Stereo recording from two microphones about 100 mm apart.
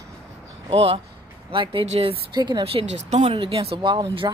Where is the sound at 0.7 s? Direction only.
75° right (ahead or behind).